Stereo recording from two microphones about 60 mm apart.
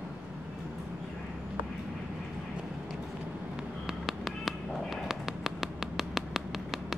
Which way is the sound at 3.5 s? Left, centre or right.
Centre.